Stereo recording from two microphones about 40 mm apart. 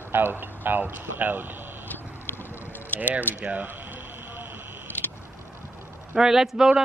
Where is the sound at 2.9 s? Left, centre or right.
Right.